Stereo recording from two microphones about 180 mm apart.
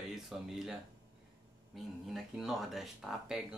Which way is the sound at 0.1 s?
Centre (ahead or behind).